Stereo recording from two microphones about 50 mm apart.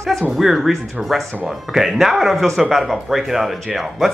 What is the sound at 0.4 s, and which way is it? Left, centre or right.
Speech, centre.